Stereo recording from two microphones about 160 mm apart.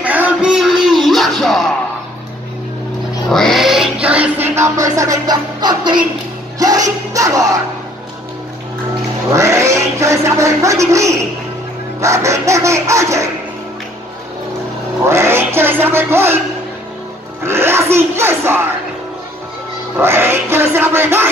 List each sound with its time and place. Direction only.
0.0 s music: 10° right (ahead or behind)
3.3 s music: 5° left (ahead or behind); by 7.5 s 20° right (ahead or behind)
9.3 s a sound: 20° right (ahead or behind)
12.0 s speech: 20° right (ahead or behind)
15.0 s speech: 15° right (ahead or behind)
17.4 s speech: 15° right (ahead or behind)
20.0 s speech: 15° right (ahead or behind)